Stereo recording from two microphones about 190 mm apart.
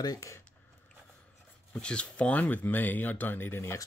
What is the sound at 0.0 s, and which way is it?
Speech, 20° left (ahead or behind).